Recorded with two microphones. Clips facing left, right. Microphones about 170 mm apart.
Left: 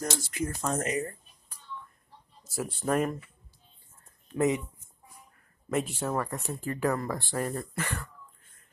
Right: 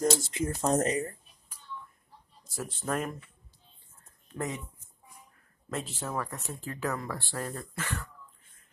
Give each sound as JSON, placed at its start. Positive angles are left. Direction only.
{"t": 0.0, "sound": "speech", "side_deg": -25}
{"t": 0.7, "sound": "speech", "side_deg": -35}
{"t": 2.4, "sound": "a sound", "side_deg": 10}
{"t": 2.8, "sound": "speech", "side_deg": 0}
{"t": 4.4, "sound": "speech", "side_deg": 20}
{"t": 5.7, "sound": "speech", "side_deg": 15}